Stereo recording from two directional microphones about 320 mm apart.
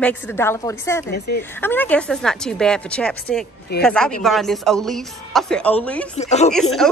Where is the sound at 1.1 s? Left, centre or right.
Left.